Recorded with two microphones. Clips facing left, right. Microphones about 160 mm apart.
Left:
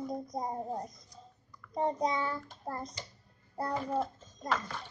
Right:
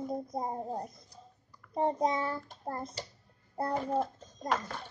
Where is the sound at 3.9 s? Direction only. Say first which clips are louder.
Right 2 dB; 40° right (ahead or behind).